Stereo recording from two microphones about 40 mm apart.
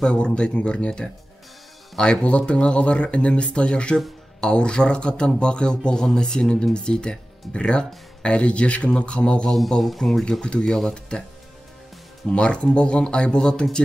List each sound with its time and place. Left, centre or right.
0.1 s speech: left
2.2 s speech: left
9.8 s speech: centre; by 11.2 s left
12.3 s speech: left